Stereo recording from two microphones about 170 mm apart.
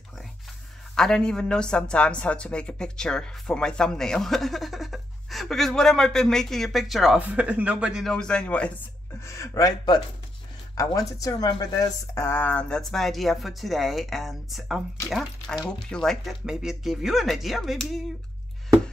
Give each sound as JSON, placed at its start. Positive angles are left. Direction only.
{"t": 0.9, "sound": "speech", "side_deg": 5}
{"t": 9.2, "sound": "speech", "side_deg": 15}